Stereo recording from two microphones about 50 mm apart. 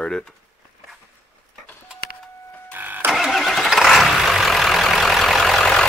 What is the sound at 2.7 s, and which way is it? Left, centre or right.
Vehicle, right.